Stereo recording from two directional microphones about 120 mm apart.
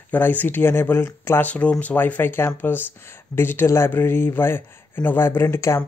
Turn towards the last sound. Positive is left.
turn(degrees=20)  # may be behind; listen again after turning